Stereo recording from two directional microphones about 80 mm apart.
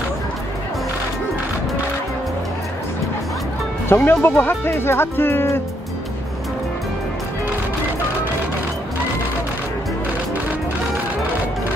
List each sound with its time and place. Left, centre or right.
3.9 s speech: left